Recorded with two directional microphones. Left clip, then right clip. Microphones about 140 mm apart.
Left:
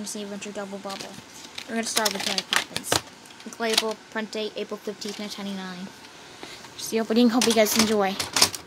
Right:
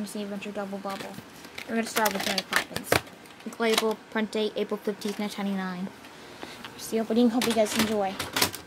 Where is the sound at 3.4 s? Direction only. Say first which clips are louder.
Even; 20° right (ahead or behind).